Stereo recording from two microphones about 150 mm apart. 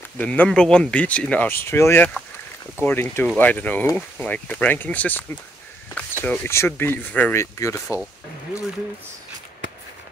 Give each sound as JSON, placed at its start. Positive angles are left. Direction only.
{"t": 0.2, "sound": "speech", "side_deg": 10}